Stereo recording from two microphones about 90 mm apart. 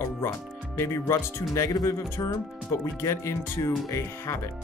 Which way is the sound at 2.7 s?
30° left (ahead or behind).